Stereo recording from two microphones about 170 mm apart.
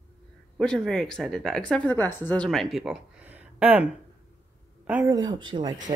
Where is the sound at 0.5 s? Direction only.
5° left (ahead or behind).